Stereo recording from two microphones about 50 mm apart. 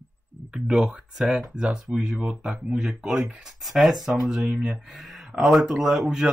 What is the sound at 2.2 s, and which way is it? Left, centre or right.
Speech, centre.